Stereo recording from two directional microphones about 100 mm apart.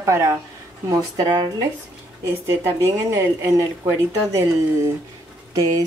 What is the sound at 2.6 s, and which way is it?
Speech, 30° right (ahead or behind).